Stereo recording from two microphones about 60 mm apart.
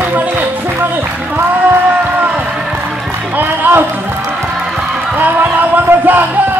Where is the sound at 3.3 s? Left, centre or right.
Right.